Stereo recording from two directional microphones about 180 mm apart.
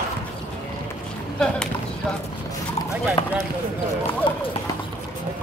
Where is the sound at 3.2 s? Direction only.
30° left (ahead or behind).